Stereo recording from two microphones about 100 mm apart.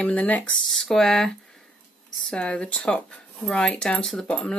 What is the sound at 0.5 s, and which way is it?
Speech, centre (ahead or behind).